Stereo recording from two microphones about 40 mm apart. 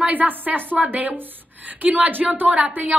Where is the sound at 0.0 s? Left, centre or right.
Right.